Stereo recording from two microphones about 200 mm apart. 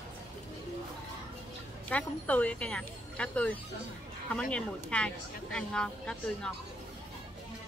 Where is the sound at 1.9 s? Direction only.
5° left (ahead or behind).